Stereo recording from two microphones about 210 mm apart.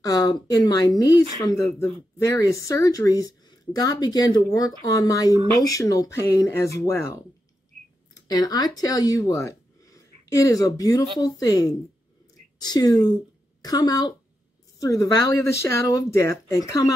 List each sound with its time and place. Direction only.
0.0 s speech: 20° left (ahead or behind)
8.3 s a woman's voice: 20° left (ahead or behind)